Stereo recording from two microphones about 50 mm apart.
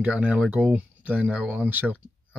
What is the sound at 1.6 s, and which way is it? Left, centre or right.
Speech, right.